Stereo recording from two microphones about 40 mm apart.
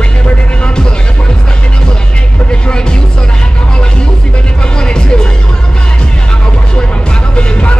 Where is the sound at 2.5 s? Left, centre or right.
Left.